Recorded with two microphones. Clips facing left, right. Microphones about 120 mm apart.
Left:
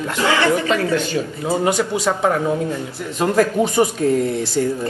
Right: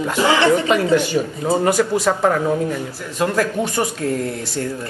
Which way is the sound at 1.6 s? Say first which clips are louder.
Right 2 dB; 15° left (ahead or behind).